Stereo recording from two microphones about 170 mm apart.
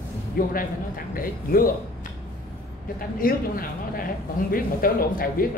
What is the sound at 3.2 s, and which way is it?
Speech, 60° left (ahead or behind).